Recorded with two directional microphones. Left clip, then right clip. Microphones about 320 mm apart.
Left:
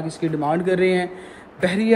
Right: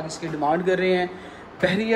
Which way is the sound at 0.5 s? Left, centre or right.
Centre.